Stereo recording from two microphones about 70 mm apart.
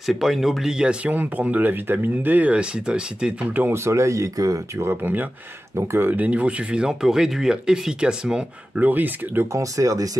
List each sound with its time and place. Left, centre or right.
0.0 s speech: centre
3.7 s speech: right
4.7 s speech: right; by 8.8 s centre
8.8 s speech: right
9.5 s speech: right